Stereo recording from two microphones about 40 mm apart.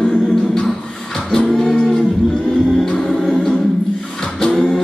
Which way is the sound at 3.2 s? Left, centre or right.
Centre.